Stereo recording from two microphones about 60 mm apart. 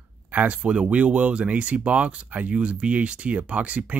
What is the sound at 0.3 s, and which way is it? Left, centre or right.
Speech, right.